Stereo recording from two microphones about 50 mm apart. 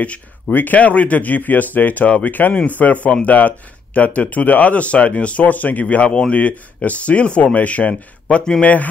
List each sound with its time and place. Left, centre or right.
0.0 s speech: left
6.0 s speech: centre
6.3 s speech: left